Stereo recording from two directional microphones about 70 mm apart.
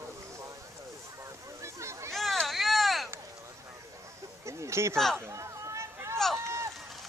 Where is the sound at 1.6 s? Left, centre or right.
Right.